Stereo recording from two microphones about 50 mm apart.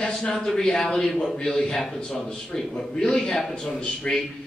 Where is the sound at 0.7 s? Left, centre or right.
Centre.